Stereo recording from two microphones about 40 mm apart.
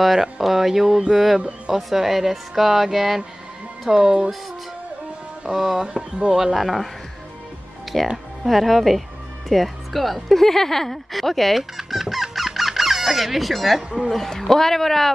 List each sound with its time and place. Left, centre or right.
0.0 s speech: centre
4.0 s speech: right
5.5 s speech: centre
7.9 s a man's voice: centre